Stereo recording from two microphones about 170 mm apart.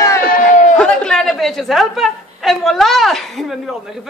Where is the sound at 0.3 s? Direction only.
50° left (ahead or behind).